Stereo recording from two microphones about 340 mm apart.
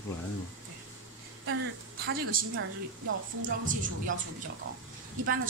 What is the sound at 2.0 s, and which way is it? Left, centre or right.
A woman's voice, right.